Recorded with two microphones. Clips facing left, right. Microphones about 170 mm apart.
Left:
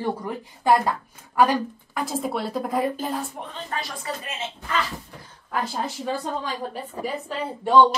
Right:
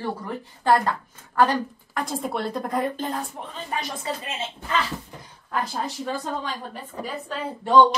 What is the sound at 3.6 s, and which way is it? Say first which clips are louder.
Speech: right 3 dB; 20° right (ahead or behind).